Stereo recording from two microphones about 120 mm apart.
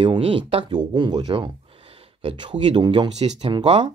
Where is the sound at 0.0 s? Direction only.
45° right (ahead or behind).